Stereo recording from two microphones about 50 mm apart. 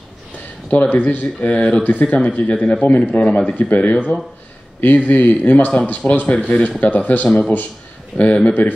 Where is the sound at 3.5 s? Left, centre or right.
Left.